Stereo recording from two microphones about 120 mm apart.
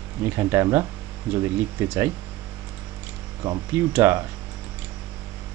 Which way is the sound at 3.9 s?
20° right (ahead or behind).